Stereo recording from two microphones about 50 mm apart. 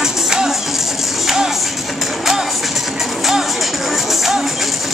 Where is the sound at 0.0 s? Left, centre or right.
Centre.